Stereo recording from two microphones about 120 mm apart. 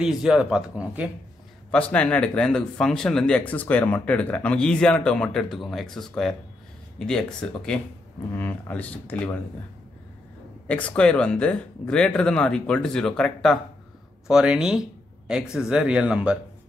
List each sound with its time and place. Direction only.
0.0 s speech: 5° right (ahead or behind)
1.7 s speech: 10° left (ahead or behind)
10.7 s speech: 10° left (ahead or behind); by 16.3 s 10° right (ahead or behind)